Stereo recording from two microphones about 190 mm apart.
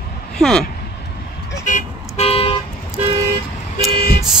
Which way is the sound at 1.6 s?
40° left (ahead or behind).